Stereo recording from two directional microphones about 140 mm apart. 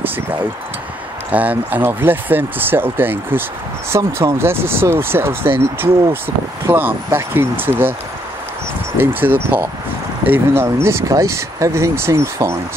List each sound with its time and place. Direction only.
1.3 s speech: 10° right (ahead or behind)
8.9 s speech: 15° right (ahead or behind)